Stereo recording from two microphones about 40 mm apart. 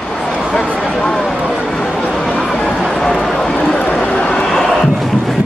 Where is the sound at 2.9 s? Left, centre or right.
Centre.